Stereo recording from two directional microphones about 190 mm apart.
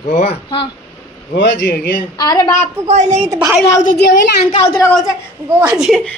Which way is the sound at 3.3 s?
15° right (ahead or behind).